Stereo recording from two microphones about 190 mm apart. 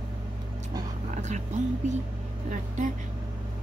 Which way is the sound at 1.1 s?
40° right (ahead or behind).